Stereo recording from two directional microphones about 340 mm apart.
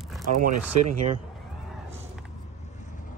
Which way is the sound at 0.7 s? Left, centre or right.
Right.